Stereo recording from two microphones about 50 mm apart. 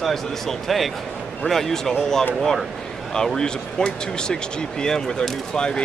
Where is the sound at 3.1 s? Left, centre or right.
Centre.